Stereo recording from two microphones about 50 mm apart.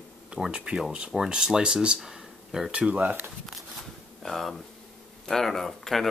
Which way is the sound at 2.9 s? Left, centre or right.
Right.